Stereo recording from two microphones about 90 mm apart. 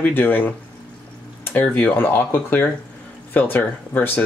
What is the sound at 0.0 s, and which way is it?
Speech, 20° left (ahead or behind).